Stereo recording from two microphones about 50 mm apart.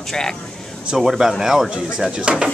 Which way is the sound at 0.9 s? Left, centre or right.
Centre.